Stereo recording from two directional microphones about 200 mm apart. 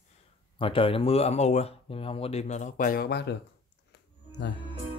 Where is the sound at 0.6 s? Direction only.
25° left (ahead or behind); by 3.4 s 55° left (ahead or behind).